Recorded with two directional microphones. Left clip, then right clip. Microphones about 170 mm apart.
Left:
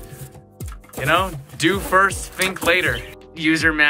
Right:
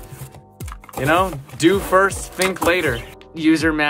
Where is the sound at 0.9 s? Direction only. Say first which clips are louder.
Right 1 dB; 30° right (ahead or behind).